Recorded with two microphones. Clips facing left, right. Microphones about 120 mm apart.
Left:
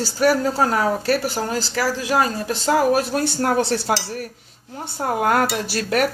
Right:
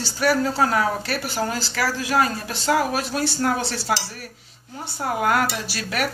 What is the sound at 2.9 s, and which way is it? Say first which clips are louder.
Speech: left 3 dB; 50° left (ahead or behind).